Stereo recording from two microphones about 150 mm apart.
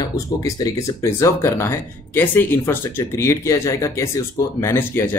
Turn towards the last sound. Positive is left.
turn(degrees=15)  # may be behind; listen again after turning